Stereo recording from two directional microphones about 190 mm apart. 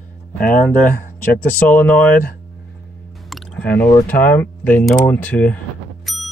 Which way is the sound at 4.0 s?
10° left (ahead or behind).